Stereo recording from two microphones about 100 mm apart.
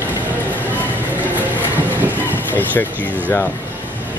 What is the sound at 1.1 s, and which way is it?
Train, 15° right (ahead or behind).